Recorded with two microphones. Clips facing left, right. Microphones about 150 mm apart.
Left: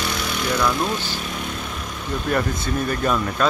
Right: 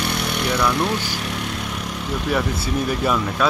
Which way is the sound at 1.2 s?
70° right (ahead or behind).